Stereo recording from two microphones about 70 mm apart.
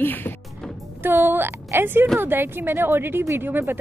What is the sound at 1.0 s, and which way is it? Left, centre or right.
A woman's voice, right.